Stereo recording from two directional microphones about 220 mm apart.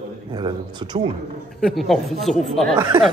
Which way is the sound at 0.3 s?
20° right (ahead or behind).